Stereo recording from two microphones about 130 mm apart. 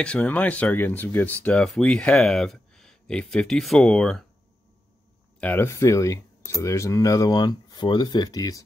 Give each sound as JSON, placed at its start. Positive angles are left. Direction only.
{"t": 0.0, "sound": "speech", "side_deg": 10}
{"t": 5.4, "sound": "speech", "side_deg": 15}